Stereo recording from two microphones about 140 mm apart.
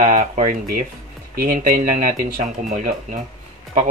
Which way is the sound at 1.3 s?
90° right.